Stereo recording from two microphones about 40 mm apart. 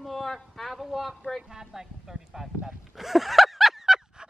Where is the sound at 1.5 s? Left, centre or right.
Centre.